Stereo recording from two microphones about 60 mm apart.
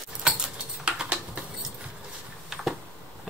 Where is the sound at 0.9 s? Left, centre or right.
Centre.